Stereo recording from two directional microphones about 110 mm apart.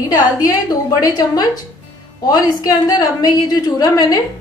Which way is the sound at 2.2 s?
35° left (ahead or behind).